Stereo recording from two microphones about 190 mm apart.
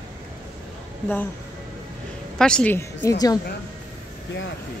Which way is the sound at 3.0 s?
20° left (ahead or behind).